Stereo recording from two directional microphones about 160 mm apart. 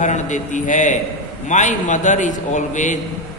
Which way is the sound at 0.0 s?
50° left (ahead or behind).